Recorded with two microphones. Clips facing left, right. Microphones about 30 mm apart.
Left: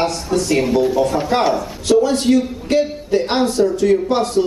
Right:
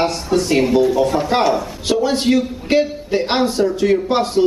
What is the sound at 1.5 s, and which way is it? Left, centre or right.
A man's voice, centre.